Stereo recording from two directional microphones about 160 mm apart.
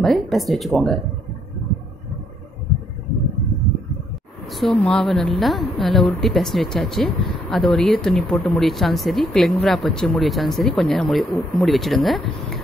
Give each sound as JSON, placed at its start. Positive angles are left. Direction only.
{"t": 0.0, "sound": "a woman's voice", "side_deg": 0}
{"t": 4.6, "sound": "a woman's voice", "side_deg": 5}